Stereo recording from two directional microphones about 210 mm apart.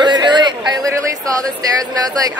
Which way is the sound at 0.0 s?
20° right (ahead or behind).